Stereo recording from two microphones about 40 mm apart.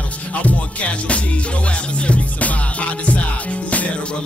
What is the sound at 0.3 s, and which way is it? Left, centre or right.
Music, left.